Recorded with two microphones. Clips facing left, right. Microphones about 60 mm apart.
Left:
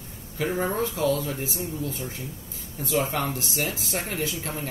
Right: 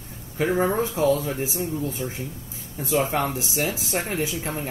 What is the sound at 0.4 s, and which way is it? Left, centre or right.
Speech, right.